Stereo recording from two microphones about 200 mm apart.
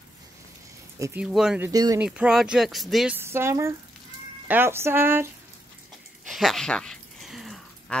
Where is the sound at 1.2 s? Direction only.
5° right (ahead or behind).